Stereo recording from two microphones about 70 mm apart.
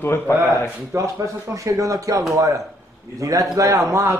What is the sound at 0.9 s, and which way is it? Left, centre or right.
Speech, right.